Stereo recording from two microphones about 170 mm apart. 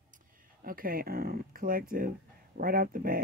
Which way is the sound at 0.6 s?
55° right (ahead or behind).